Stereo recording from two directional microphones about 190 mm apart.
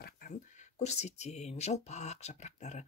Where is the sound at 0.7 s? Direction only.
35° left (ahead or behind).